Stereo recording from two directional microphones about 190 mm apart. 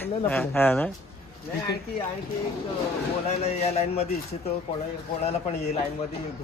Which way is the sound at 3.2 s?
35° left (ahead or behind).